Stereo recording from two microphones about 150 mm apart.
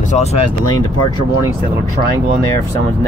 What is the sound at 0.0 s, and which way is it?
Speech, 50° left (ahead or behind).